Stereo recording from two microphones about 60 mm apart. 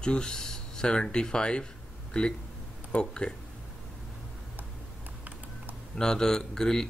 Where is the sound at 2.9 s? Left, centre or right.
Centre.